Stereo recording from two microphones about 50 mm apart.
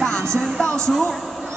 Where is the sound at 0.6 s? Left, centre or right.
Centre.